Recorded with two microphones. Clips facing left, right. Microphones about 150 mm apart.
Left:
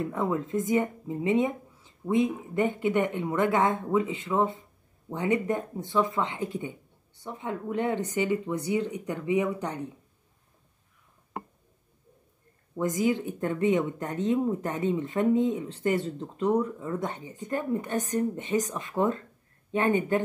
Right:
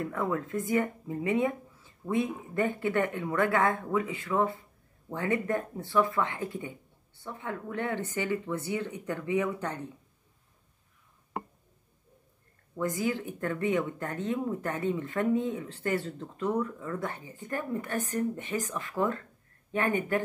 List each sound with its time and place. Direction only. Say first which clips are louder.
0.0 s a woman's voice: left 3 dB; 20° left (ahead or behind)
12.7 s speech: left 4 dB; 20° left (ahead or behind)